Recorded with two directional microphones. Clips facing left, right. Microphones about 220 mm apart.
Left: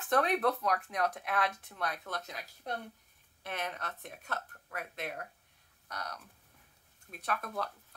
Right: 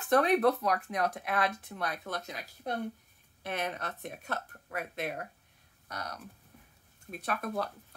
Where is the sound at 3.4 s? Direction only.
15° right (ahead or behind).